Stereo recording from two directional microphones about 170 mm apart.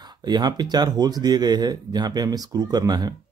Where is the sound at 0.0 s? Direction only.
25° right (ahead or behind).